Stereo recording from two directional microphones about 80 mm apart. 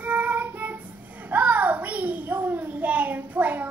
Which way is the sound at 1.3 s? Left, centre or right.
Right.